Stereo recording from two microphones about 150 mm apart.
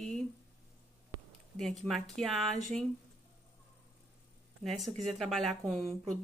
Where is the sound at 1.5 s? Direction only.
5° left (ahead or behind).